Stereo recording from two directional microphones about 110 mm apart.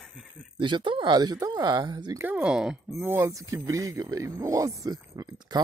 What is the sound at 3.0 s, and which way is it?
Speech, 25° right (ahead or behind).